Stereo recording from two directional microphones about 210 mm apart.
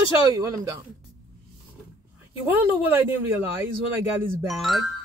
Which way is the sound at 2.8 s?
10° right (ahead or behind).